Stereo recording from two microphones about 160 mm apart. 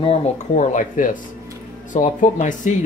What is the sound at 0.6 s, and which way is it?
Speech, 50° left (ahead or behind).